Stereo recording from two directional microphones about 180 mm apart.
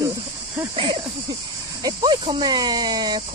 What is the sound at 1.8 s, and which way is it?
Speech, 20° right (ahead or behind).